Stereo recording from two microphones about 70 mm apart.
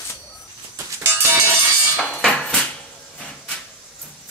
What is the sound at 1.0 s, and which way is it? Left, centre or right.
Music, right.